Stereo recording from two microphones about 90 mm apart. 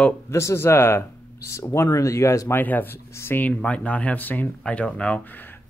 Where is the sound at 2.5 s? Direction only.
20° left (ahead or behind).